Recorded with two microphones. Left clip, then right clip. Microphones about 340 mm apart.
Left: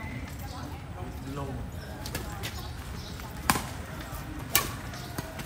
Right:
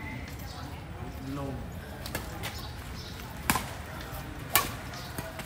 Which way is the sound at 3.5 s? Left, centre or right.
Centre.